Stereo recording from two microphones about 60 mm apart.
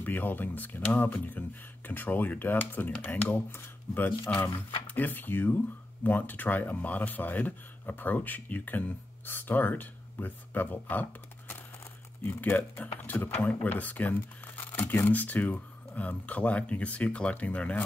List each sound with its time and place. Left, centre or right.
0.0 s speech: left